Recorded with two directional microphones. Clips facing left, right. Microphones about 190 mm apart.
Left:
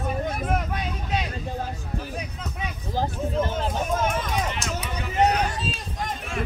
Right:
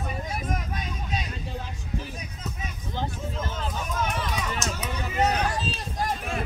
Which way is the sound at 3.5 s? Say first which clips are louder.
Left 5 dB; 50° left (ahead or behind).